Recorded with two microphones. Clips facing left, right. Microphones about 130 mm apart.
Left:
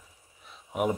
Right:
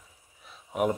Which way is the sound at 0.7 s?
Centre (ahead or behind).